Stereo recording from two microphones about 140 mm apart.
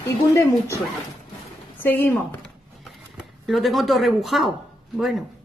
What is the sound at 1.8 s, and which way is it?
Speech, 15° left (ahead or behind).